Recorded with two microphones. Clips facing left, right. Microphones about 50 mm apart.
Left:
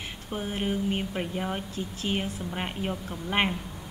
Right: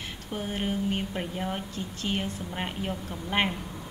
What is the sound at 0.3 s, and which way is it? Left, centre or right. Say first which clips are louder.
Speech: left 1 dB; centre.